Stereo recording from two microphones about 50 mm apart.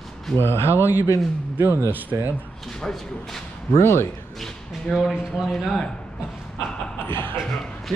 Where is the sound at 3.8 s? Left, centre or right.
Left.